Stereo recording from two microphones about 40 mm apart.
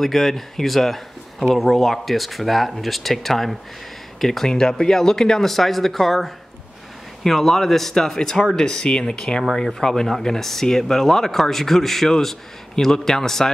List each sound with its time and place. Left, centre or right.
0.0 s speech: centre